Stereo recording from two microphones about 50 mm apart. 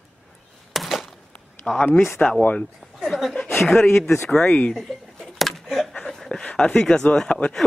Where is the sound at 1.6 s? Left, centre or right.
Centre.